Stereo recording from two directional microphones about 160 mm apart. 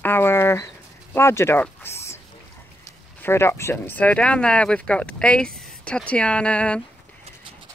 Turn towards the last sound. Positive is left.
turn(degrees=10)  # may be behind; listen again after turning